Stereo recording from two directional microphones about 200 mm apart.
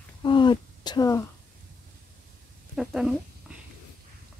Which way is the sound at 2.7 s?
5° right (ahead or behind).